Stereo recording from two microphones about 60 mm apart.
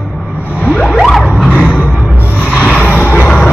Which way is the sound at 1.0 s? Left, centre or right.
Centre.